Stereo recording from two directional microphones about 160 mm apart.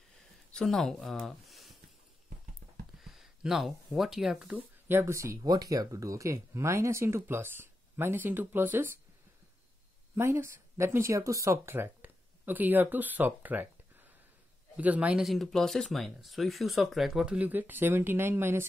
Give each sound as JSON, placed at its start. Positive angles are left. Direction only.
{"t": 0.5, "sound": "speech", "side_deg": 5}
{"t": 3.0, "sound": "speech", "side_deg": -5}
{"t": 4.8, "sound": "speech", "side_deg": -15}
{"t": 10.1, "sound": "speech", "side_deg": -15}
{"t": 14.8, "sound": "speech", "side_deg": -10}